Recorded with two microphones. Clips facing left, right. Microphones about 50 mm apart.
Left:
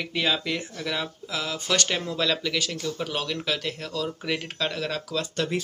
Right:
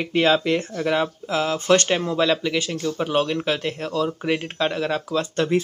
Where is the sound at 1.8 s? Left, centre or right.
Right.